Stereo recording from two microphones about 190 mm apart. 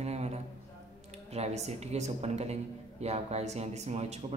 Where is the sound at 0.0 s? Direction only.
35° right (ahead or behind).